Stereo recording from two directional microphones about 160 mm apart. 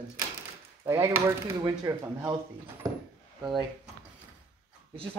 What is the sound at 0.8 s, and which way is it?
Speech, 15° right (ahead or behind).